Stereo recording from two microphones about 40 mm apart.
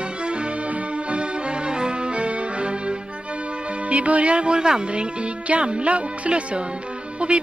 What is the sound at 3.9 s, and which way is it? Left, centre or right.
Speech, right.